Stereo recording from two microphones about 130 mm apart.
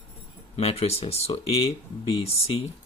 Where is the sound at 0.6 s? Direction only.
50° left (ahead or behind).